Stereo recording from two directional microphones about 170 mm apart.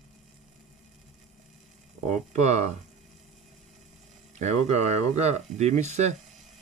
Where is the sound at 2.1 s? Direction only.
45° right (ahead or behind).